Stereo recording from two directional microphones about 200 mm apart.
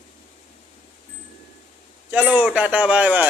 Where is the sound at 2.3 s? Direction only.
5° right (ahead or behind).